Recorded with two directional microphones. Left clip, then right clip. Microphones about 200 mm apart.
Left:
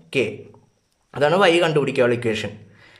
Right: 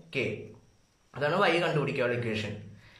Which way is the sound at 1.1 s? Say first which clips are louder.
Left 10 dB; 45° left (ahead or behind).